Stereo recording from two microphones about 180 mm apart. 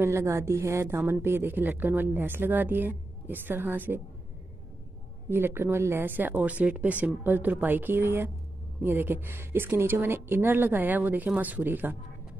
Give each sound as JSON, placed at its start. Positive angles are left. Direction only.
{"t": 0.0, "sound": "a woman's voice", "side_deg": -15}
{"t": 5.3, "sound": "a woman's voice", "side_deg": -10}